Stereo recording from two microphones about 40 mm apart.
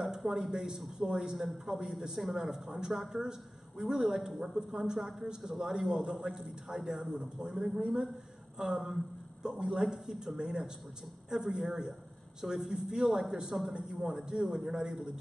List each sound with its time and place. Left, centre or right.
0.0 s a man's voice: centre